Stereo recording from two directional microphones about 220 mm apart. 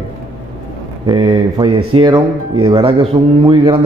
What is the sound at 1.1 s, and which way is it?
A man's voice, 20° right (ahead or behind).